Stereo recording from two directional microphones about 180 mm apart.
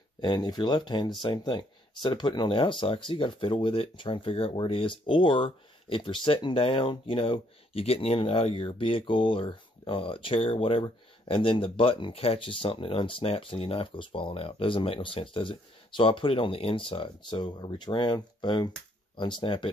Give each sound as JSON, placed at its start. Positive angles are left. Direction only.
{"t": 0.2, "sound": "speech", "side_deg": 25}